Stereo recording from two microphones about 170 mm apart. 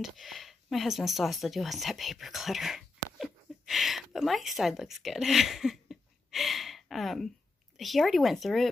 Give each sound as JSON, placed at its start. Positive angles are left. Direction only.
{"t": 0.0, "sound": "speech", "side_deg": 0}